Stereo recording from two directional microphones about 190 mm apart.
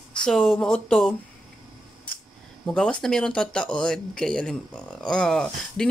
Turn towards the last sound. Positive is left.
turn(degrees=5)  # may be behind; listen again after turning